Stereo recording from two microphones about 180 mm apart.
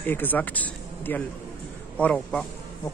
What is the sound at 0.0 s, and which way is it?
Speech, 10° left (ahead or behind).